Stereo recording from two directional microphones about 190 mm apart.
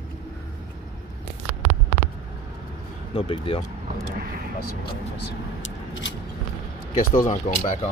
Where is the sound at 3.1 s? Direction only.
30° left (ahead or behind).